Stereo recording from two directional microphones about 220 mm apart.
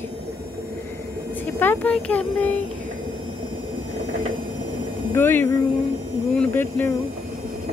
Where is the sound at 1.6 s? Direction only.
10° left (ahead or behind).